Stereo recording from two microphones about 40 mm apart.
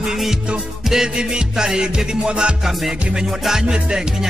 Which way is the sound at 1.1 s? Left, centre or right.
Centre.